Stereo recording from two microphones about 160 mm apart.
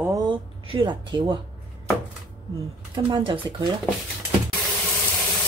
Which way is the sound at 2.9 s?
30° right (ahead or behind).